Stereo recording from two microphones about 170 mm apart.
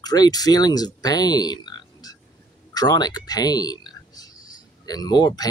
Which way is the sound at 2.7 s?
25° left (ahead or behind).